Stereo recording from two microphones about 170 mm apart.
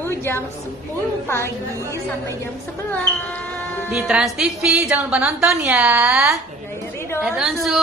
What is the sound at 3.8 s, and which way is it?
A woman's voice, 5° right (ahead or behind).